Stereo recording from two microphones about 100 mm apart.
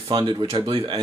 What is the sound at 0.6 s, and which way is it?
Speech, 60° right (ahead or behind).